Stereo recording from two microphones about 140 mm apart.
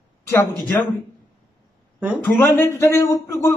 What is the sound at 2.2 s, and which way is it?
A man's voice, 15° left (ahead or behind).